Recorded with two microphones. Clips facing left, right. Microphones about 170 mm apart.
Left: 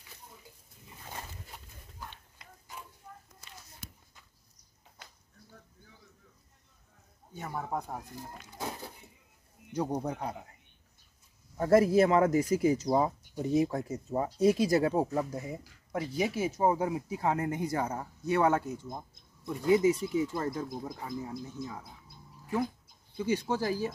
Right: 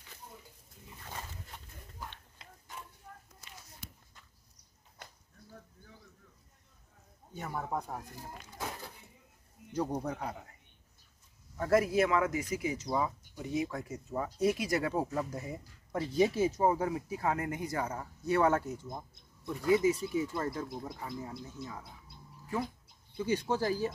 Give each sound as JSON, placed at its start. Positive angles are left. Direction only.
{"t": 1.5, "sound": "a sound", "side_deg": 5}
{"t": 7.3, "sound": "speech", "side_deg": 5}
{"t": 9.8, "sound": "speech", "side_deg": 15}
{"t": 11.5, "sound": "speech", "side_deg": 30}
{"t": 15.1, "sound": "speech", "side_deg": 15}
{"t": 20.7, "sound": "speech", "side_deg": 10}
{"t": 23.1, "sound": "speech", "side_deg": 10}